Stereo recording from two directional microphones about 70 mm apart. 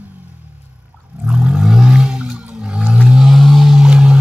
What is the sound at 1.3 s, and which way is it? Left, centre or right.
Whale vocalization, centre.